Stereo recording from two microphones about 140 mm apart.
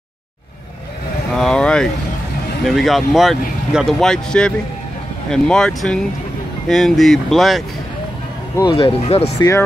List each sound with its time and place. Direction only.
1.3 s vehicle: 5° left (ahead or behind)
2.6 s speech: centre (ahead or behind)
8.6 s speech: 40° left (ahead or behind)